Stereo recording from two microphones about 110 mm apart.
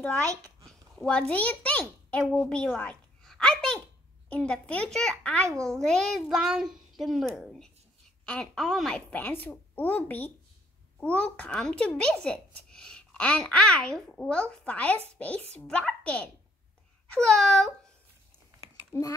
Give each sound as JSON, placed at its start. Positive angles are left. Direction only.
{"t": 0.7, "sound": "a sound", "side_deg": 10}
{"t": 1.3, "sound": "a child's voice", "side_deg": 15}
{"t": 3.2, "sound": "a sound", "side_deg": 5}
{"t": 4.3, "sound": "a child's voice", "side_deg": 10}
{"t": 9.2, "sound": "a child's voice", "side_deg": 20}
{"t": 18.9, "sound": "a child's voice", "side_deg": 25}